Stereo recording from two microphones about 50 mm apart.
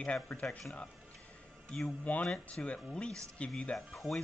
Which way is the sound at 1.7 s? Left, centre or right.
Centre.